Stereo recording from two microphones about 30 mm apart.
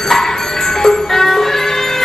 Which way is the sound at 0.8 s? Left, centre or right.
Centre.